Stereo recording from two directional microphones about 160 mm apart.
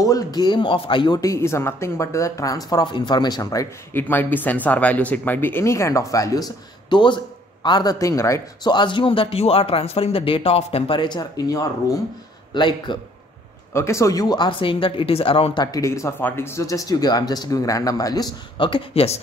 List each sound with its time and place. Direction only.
0.0 s a man's voice: 25° left (ahead or behind)
13.7 s a man's voice: 20° left (ahead or behind); by 15.6 s 35° left (ahead or behind)
15.6 s speech: 20° left (ahead or behind)